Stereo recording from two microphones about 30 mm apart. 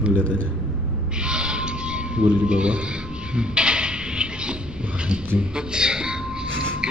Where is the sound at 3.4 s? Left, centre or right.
Right.